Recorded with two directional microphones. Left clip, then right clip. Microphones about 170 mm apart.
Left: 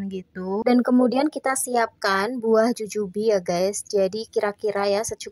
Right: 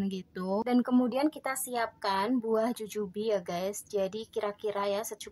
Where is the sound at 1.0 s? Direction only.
40° left (ahead or behind).